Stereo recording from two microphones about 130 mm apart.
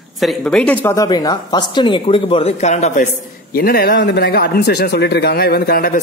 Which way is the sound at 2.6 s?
60° left (ahead or behind).